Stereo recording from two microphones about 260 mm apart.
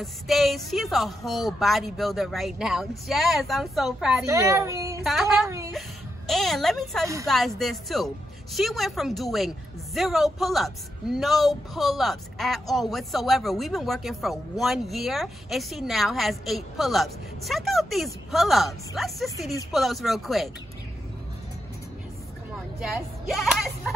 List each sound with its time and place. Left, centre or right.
0.0 s a man's voice: centre
4.3 s speech: centre
5.0 s a man's voice: centre
22.8 s a man's voice: centre